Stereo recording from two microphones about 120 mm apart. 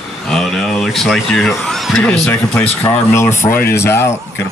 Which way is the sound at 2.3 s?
20° left (ahead or behind).